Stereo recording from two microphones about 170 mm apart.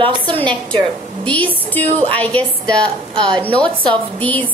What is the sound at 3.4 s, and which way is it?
Speech, 5° left (ahead or behind).